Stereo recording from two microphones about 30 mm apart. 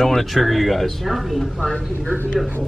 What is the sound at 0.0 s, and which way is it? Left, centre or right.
Speech, centre.